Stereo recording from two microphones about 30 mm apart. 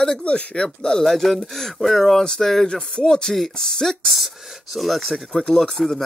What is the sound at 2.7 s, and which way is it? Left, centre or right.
Speech, left.